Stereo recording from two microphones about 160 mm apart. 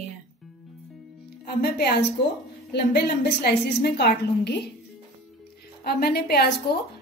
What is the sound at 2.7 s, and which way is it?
A woman's voice, 90° left.